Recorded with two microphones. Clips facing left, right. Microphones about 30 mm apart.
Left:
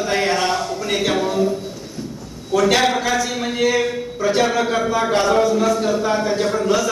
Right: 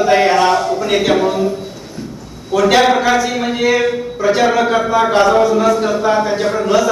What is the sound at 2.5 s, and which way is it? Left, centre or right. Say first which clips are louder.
A man's voice: right 5 dB; centre.